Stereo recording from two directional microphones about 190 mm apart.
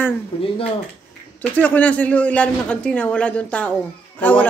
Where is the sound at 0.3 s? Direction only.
30° left (ahead or behind).